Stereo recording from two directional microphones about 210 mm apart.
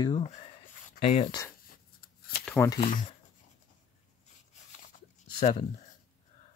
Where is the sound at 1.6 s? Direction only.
45° left (ahead or behind).